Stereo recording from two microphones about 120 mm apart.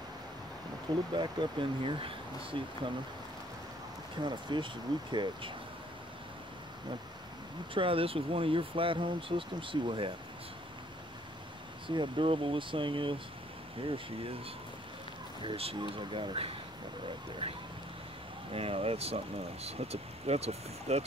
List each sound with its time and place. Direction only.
1.1 s speech: 40° right (ahead or behind)
4.2 s speech: 40° right (ahead or behind)
7.7 s speech: 50° right (ahead or behind)
11.9 s speech: 45° right (ahead or behind)
15.4 s speech: 50° right (ahead or behind)
17.4 s vehicle: 50° right (ahead or behind)
18.5 s speech: 50° right (ahead or behind)